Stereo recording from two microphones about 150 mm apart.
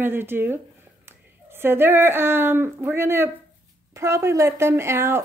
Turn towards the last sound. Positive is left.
turn(degrees=-15)  # may be behind; listen again after turning